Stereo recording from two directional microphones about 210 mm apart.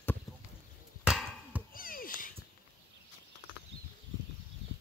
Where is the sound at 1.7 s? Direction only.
40° left (ahead or behind).